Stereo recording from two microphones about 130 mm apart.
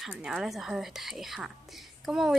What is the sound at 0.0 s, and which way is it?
Speech, 5° right (ahead or behind).